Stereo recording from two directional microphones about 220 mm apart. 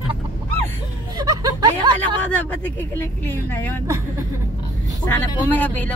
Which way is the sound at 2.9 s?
10° left (ahead or behind).